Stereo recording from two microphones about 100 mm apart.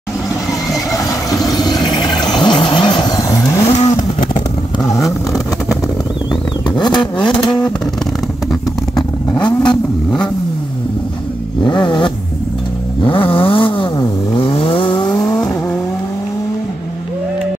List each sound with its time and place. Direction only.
1.5 s a sound: 45° left (ahead or behind)
3.2 s vehicle: 35° left (ahead or behind)
3.6 s vehicle: 90° left
6.7 s vehicle: 45° left (ahead or behind)
7.0 s vehicle: 10° left (ahead or behind)
7.3 s vehicle: 50° left (ahead or behind)
8.5 s vehicle: 5° left (ahead or behind)
11.6 s vehicle: 50° left (ahead or behind)